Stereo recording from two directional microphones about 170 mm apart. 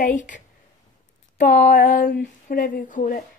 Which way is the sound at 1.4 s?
50° left (ahead or behind).